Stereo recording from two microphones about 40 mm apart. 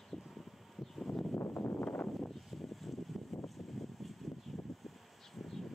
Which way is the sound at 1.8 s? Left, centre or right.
Left.